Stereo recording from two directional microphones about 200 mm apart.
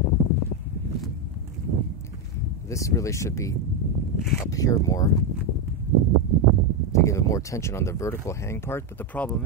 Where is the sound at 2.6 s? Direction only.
15° left (ahead or behind).